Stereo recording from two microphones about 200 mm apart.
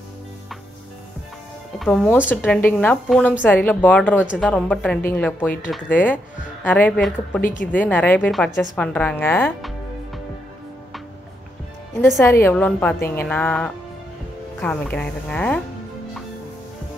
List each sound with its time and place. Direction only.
1.8 s speech: 5° left (ahead or behind)
12.2 s speech: 15° left (ahead or behind)